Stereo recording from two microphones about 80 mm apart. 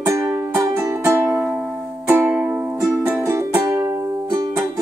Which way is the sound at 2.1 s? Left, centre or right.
Right.